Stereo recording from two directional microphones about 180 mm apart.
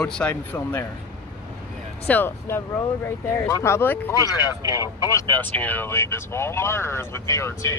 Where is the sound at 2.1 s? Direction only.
10° left (ahead or behind).